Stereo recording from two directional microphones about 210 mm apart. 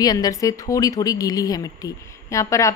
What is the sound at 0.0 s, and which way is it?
A woman's voice, 20° left (ahead or behind).